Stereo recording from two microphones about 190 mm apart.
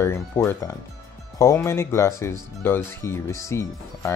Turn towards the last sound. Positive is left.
turn(degrees=15)  # may be behind; listen again after turning